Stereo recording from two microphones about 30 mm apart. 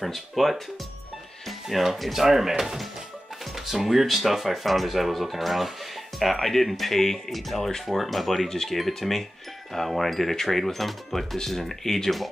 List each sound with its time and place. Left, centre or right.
0.0 s speech: centre
1.7 s speech: centre